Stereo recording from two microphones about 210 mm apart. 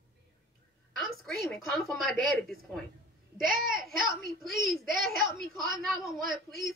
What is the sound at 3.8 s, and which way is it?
A woman's voice, centre (ahead or behind).